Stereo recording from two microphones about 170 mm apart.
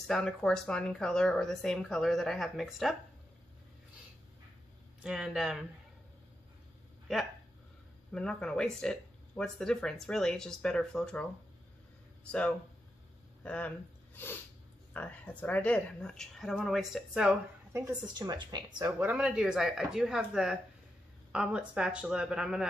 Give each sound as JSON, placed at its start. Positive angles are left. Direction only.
{"t": 0.0, "sound": "speech", "side_deg": 5}
{"t": 5.0, "sound": "speech", "side_deg": -5}
{"t": 8.1, "sound": "speech", "side_deg": 5}
{"t": 12.3, "sound": "speech", "side_deg": 5}
{"t": 15.0, "sound": "speech", "side_deg": 10}
{"t": 17.7, "sound": "a woman's voice", "side_deg": -20}
{"t": 18.9, "sound": "speech", "side_deg": -10}